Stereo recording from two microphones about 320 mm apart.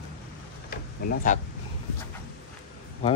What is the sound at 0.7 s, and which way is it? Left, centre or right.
Tick-tock, left.